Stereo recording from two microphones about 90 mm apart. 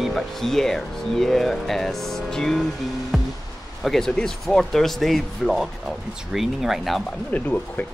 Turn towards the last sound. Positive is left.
turn(degrees=20)  # may be behind; listen again after turning